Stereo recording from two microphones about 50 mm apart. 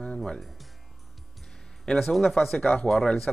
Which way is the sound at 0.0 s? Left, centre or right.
Centre.